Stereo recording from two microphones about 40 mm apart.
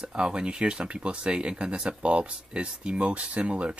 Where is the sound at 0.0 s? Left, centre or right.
Centre.